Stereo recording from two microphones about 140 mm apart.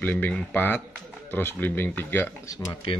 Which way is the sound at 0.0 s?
10° left (ahead or behind).